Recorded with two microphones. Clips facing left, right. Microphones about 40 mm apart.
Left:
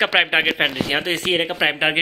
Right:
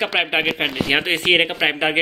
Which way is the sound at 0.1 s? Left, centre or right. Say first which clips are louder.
Left 2 dB; centre.